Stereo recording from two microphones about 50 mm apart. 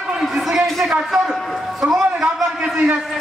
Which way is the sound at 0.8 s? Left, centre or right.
Centre.